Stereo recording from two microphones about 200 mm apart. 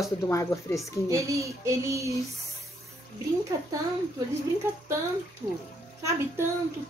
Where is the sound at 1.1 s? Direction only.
15° right (ahead or behind).